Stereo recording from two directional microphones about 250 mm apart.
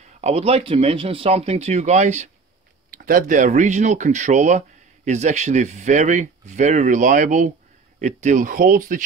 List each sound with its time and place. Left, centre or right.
0.0 s speech: right